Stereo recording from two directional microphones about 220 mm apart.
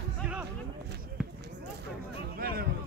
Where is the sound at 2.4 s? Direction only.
45° right (ahead or behind).